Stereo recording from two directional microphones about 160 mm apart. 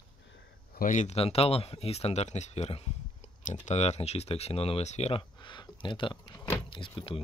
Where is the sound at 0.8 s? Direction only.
55° left (ahead or behind).